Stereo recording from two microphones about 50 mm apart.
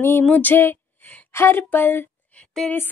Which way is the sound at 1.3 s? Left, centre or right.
Left.